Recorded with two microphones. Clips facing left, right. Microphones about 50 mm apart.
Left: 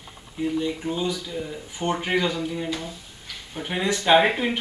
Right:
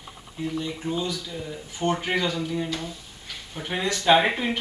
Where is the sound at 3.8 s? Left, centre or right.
Centre.